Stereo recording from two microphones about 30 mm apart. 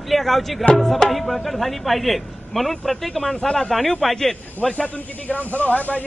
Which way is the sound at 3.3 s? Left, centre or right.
Left.